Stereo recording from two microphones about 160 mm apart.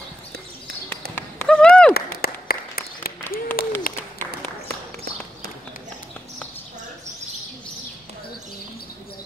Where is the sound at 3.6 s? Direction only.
65° left (ahead or behind).